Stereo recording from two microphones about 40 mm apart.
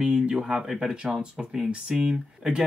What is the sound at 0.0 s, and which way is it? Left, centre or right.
Speech, centre.